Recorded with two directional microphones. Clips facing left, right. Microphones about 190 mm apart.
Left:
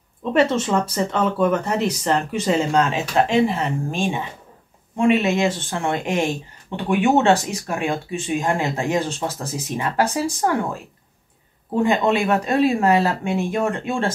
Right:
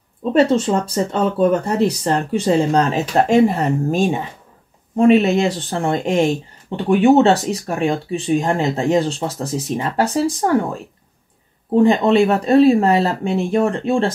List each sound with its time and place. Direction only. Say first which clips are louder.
0.2 s speech: right 4 dB; 30° right (ahead or behind)